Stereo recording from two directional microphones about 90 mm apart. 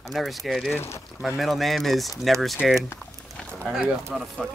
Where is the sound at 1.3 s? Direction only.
Centre (ahead or behind).